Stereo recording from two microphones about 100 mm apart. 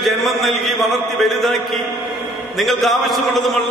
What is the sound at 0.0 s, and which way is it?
A man's voice, centre (ahead or behind).